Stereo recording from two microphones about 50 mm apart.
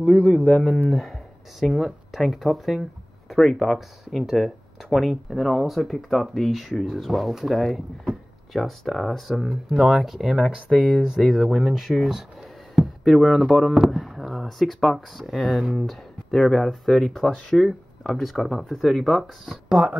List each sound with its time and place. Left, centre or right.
0.0 s a man's voice: right
0.8 s speech: centre
12.1 s a sound: centre
13.8 s speech: centre
19.5 s speech: centre